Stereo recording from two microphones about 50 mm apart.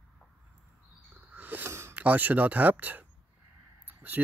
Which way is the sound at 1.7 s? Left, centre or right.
Right.